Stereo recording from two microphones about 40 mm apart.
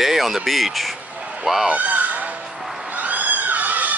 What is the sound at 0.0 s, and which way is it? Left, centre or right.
Speech, centre.